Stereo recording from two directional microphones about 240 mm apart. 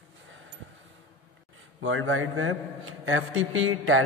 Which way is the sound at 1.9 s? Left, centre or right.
Right.